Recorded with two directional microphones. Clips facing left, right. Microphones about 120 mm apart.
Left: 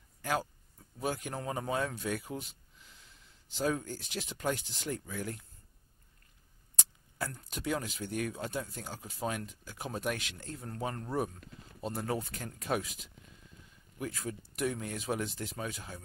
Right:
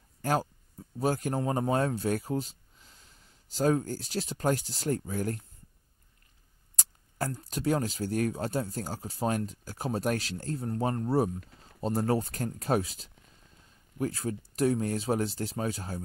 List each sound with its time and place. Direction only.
0.2 s speech: 40° right (ahead or behind)
7.3 s speech: 40° right (ahead or behind)